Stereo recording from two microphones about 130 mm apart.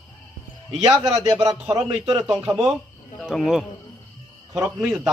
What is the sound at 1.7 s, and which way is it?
Speech, 30° right (ahead or behind).